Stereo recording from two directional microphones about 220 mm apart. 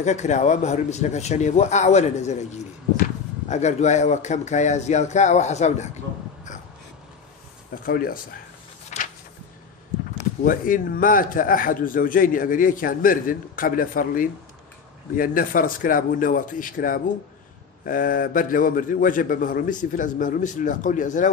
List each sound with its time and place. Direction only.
0.0 s a man's voice: 30° left (ahead or behind)
7.7 s a man's voice: 40° left (ahead or behind)
8.9 s a sound: 35° left (ahead or behind)
10.4 s a man's voice: 40° left (ahead or behind)